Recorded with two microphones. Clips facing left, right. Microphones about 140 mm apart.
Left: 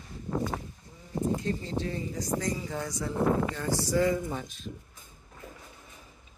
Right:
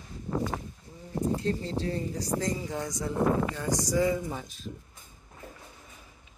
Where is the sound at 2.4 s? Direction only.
20° right (ahead or behind).